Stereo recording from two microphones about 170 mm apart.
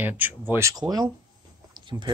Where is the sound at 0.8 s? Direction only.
25° right (ahead or behind).